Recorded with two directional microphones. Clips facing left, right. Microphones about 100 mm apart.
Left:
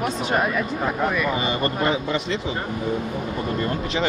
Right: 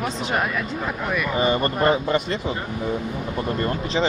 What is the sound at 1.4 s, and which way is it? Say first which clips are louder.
Speech: right 3 dB; 45° right (ahead or behind).